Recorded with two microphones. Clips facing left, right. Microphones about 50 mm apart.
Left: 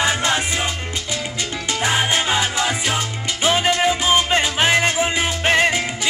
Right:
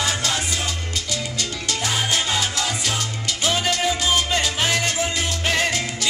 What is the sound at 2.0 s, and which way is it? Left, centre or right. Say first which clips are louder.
Music: left 3 dB; left.